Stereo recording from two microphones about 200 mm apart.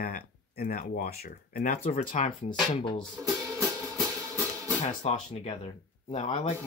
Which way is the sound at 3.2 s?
Centre (ahead or behind).